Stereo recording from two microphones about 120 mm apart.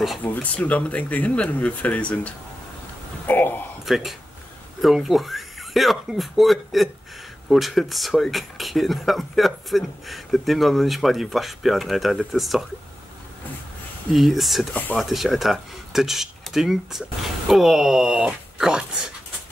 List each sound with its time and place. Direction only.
0.2 s speech: 15° left (ahead or behind)
3.3 s a sound: 15° left (ahead or behind)
3.8 s speech: centre (ahead or behind)
14.1 s speech: centre (ahead or behind)